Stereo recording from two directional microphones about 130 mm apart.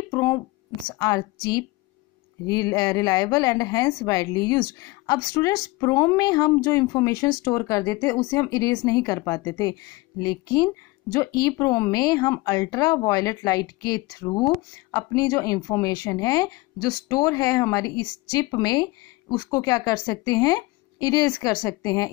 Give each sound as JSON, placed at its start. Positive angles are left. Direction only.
{"t": 0.1, "sound": "a woman's voice", "side_deg": 25}